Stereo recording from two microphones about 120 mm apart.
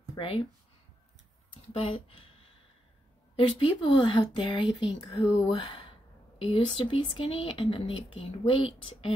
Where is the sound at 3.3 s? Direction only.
45° left (ahead or behind).